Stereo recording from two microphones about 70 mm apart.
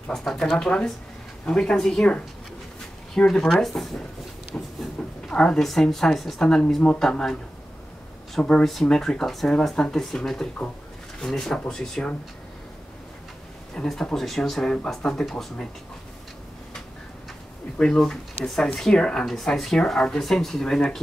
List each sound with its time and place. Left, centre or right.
0.1 s a woman's voice: centre
4.5 s train: centre
5.0 s a sound: centre
5.3 s a woman's voice: centre
8.4 s a woman's voice: centre
13.8 s a woman's voice: centre
17.7 s a woman's voice: centre